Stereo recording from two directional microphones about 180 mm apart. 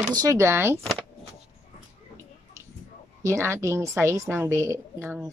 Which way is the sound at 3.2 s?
15° right (ahead or behind).